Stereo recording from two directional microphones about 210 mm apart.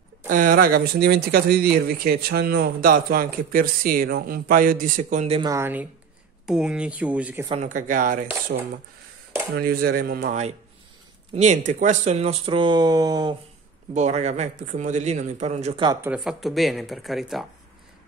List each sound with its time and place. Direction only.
0.3 s speech: 40° right (ahead or behind)
5.4 s speech: 15° right (ahead or behind)
7.4 s speech: 30° right (ahead or behind)
13.9 s speech: 30° right (ahead or behind)
16.1 s speech: centre (ahead or behind)